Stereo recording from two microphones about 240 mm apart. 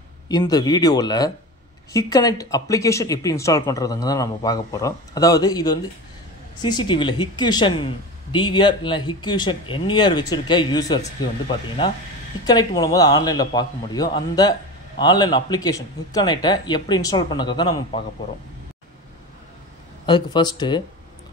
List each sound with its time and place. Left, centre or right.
0.3 s speech: centre
20.1 s speech: centre